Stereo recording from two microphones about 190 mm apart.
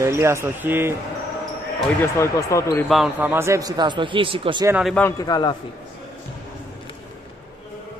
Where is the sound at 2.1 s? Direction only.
15° left (ahead or behind).